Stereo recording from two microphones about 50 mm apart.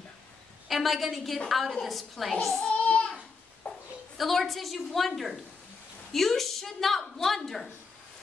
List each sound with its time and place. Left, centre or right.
0.7 s a woman's voice: centre
2.6 s child singing: left
3.6 s a sound: left
4.2 s a woman's voice: centre